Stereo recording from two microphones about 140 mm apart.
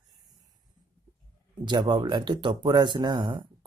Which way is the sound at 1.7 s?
30° right (ahead or behind).